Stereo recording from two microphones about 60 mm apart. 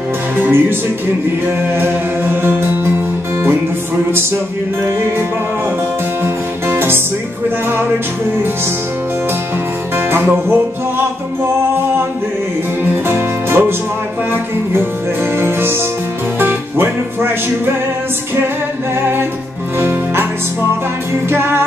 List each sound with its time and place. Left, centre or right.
0.4 s music: right
6.2 s music: right
9.9 s music: right
12.9 s music: right
15.3 s music: right
19.8 s music: right
21.3 s music: right